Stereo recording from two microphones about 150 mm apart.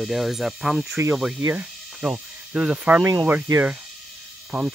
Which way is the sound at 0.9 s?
15° right (ahead or behind).